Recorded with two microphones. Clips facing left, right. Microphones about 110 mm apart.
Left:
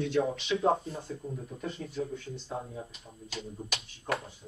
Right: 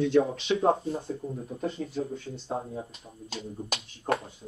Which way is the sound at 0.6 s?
40° right (ahead or behind).